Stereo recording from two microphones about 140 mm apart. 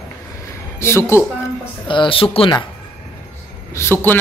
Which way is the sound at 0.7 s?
20° left (ahead or behind).